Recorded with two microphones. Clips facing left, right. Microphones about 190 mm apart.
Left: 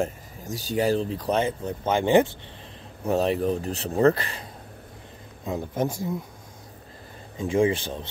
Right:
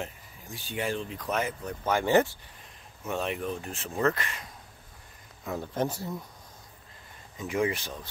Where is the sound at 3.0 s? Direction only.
35° left (ahead or behind).